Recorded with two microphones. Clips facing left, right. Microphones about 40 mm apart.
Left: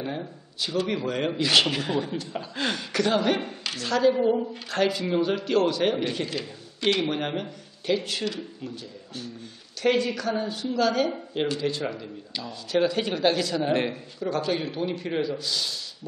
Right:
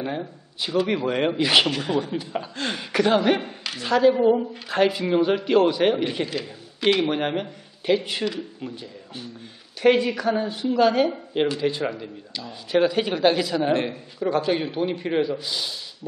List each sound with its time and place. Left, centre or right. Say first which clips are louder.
0.0 s a woman's voice: right 3 dB; centre
1.7 s a man's voice: right 2 dB; centre
2.6 s a woman's voice: right 3 dB; centre